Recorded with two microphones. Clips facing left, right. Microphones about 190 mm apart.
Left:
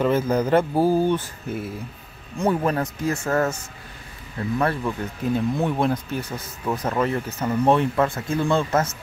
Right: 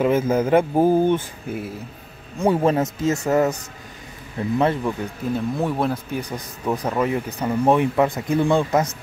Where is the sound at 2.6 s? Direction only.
25° right (ahead or behind).